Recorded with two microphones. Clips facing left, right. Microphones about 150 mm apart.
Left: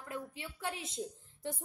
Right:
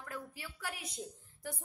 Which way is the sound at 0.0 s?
25° left (ahead or behind).